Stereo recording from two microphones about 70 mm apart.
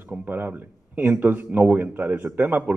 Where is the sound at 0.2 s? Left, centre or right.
Right.